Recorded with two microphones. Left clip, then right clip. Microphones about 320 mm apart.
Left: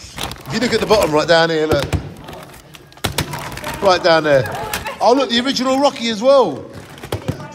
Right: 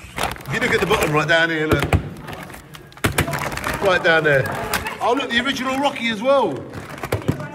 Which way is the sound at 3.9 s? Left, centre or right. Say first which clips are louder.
Left 4 dB; centre.